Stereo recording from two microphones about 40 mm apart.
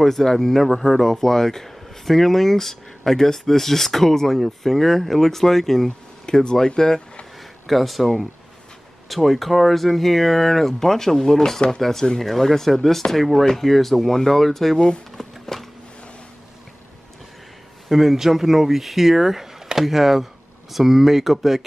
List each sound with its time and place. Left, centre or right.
0.0 s speech: centre
5.9 s speech: centre
7.6 s speech: centre
15.1 s a sound: centre
17.8 s speech: centre